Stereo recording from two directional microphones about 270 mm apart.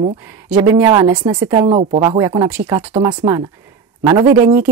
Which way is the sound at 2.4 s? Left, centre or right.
Centre.